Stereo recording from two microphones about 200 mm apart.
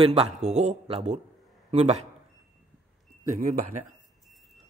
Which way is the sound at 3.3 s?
45° right (ahead or behind).